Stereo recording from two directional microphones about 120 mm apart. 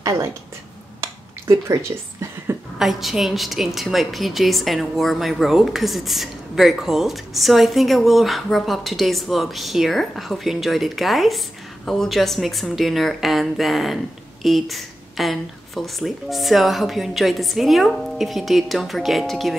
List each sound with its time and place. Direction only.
0.0 s a woman's voice: 25° right (ahead or behind)
1.0 s a sound: 25° right (ahead or behind)
2.8 s a woman's voice: centre (ahead or behind)